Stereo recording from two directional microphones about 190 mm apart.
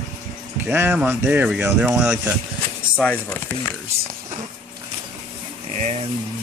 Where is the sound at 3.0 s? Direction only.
5° left (ahead or behind).